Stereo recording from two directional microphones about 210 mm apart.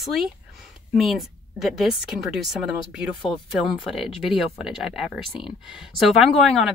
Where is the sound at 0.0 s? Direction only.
Centre (ahead or behind).